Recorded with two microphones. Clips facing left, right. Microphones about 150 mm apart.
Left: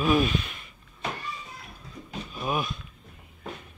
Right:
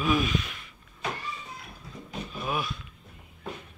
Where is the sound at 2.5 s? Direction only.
20° left (ahead or behind).